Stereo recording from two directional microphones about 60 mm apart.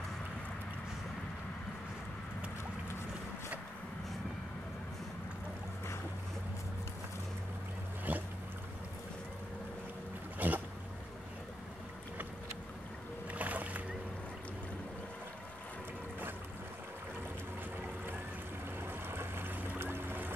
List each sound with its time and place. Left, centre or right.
8.1 s boat: right
10.4 s boat: right
13.3 s boat: right
18.8 s boat: right
19.8 s music: right